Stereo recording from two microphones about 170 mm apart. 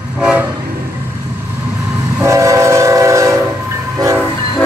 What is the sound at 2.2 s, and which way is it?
Train, 20° right (ahead or behind).